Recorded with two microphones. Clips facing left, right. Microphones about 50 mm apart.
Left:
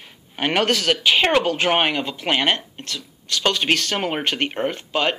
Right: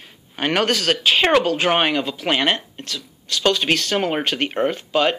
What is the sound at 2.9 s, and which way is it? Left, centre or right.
Speech, left.